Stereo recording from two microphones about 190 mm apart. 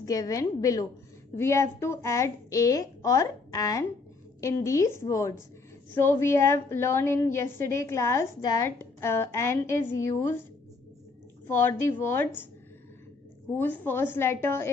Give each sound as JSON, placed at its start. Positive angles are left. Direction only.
{"t": 0.0, "sound": "a woman's voice", "side_deg": 20}
{"t": 11.4, "sound": "a woman's voice", "side_deg": 10}
{"t": 13.6, "sound": "a woman's voice", "side_deg": 10}